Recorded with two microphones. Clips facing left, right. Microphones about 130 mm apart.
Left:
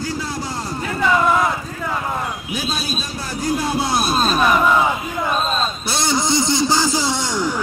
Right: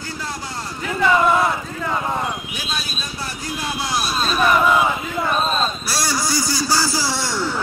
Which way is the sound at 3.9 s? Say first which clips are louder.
Left 2 dB; 50° left (ahead or behind).